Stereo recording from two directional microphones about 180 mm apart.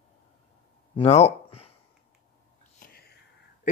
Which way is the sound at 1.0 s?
35° left (ahead or behind).